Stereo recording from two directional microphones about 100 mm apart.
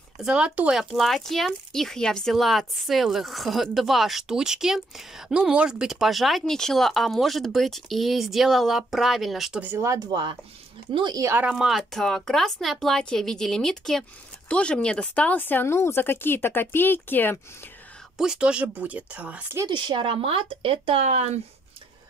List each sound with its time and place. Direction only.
0.2 s speech: 10° right (ahead or behind)
9.8 s speech: 35° right (ahead or behind)
10.9 s speech: 55° right (ahead or behind)
11.5 s speech: 5° right (ahead or behind); by 17.4 s 20° left (ahead or behind)
18.1 s speech: 5° right (ahead or behind)
19.7 s speech: 55° right (ahead or behind); by 21.4 s 90° right